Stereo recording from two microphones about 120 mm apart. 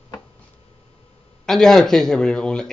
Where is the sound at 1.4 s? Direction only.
5° left (ahead or behind).